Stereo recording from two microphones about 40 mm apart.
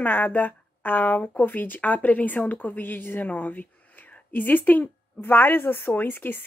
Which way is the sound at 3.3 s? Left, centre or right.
Left.